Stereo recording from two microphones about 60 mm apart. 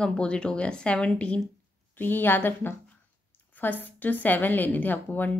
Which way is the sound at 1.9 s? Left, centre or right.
Left.